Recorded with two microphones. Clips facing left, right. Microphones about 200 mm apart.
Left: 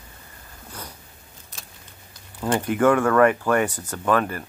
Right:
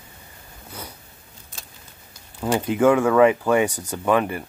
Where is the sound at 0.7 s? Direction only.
10° right (ahead or behind).